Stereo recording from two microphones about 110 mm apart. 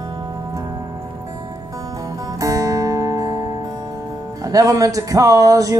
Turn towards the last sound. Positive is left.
turn(degrees=-30)  # may be behind; listen again after turning